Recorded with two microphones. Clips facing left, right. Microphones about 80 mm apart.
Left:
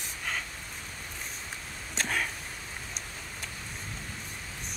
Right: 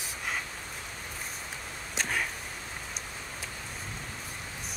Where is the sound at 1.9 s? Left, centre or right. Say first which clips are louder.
Left 1 dB; centre.